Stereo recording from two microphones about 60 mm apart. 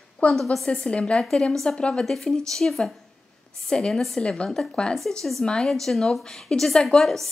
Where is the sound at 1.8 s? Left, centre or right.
Centre.